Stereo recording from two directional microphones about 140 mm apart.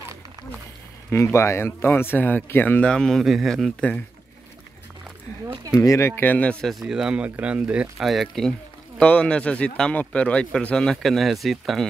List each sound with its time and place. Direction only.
1.1 s speech: 20° left (ahead or behind)
5.8 s speech: 20° left (ahead or behind); by 11.9 s centre (ahead or behind)